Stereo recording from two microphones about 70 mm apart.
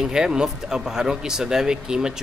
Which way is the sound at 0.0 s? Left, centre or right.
Centre.